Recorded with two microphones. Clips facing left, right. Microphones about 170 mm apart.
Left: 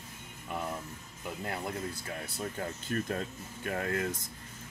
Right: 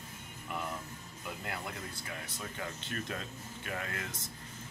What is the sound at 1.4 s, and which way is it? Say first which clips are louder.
Speech: left 7 dB; 40° left (ahead or behind).